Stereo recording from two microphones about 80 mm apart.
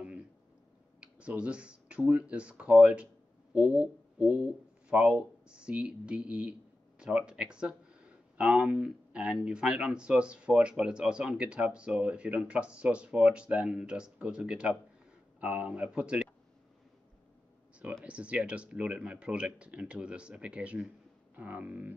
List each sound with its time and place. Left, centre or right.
1.0 s speech: centre
18.0 s speech: centre